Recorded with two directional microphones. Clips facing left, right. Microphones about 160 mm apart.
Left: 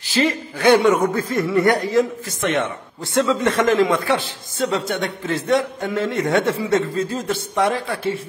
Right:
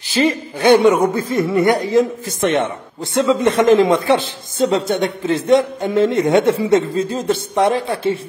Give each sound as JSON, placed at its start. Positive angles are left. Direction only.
{"t": 0.1, "sound": "a man's voice", "side_deg": -25}